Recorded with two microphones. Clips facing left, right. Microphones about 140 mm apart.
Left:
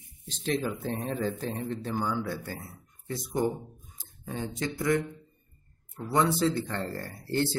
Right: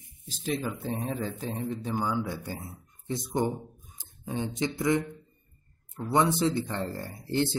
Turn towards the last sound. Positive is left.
turn(degrees=-15)  # may be behind; listen again after turning